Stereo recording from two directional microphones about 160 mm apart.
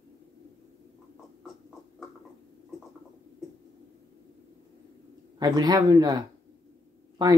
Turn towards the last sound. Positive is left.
turn(degrees=-25)  # may be behind; listen again after turning